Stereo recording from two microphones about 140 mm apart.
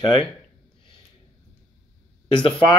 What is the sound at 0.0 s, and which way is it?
Speech, 35° left (ahead or behind).